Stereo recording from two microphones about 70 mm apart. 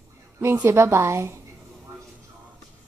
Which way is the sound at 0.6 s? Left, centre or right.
Right.